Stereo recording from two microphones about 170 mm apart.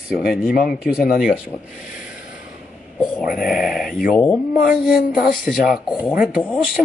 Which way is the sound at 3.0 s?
5° right (ahead or behind).